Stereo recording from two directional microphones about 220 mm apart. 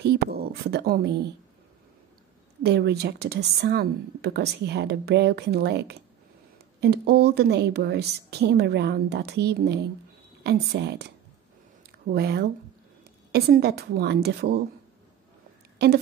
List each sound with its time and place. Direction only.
0.0 s speech: 45° right (ahead or behind)
2.6 s speech: 50° right (ahead or behind)
12.1 s speech: 45° right (ahead or behind)
15.8 s speech: 45° right (ahead or behind)